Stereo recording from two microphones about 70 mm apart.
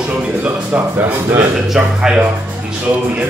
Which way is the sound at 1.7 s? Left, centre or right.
Centre.